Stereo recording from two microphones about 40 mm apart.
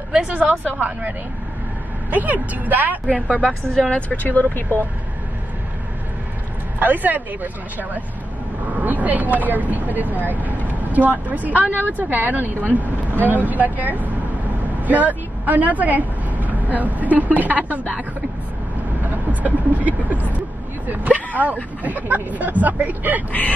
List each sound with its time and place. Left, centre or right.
0.3 s speech: right
2.0 s speech: right
3.3 s a woman's voice: left
4.1 s speech: left
6.8 s speech: right
8.6 s speech: right
19.0 s speech: right